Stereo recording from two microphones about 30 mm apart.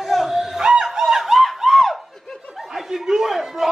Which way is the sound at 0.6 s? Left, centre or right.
Right.